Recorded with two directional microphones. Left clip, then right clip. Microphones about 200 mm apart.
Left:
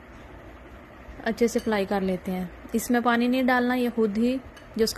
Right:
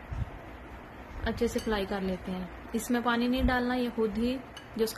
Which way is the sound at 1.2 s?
30° left (ahead or behind).